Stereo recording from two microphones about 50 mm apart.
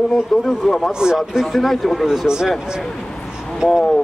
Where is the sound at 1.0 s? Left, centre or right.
Centre.